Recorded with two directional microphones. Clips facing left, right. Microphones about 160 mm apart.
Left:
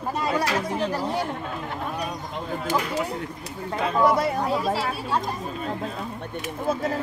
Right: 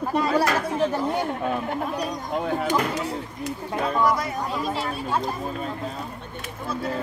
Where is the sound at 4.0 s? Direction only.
25° left (ahead or behind).